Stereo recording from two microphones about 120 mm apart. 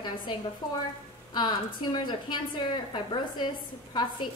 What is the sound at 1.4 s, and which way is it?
A woman's voice, 40° left (ahead or behind).